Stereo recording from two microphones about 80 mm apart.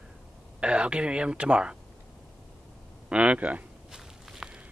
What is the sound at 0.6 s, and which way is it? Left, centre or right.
Speech, centre.